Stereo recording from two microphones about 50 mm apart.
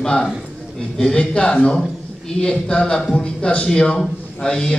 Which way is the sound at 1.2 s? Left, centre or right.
Left.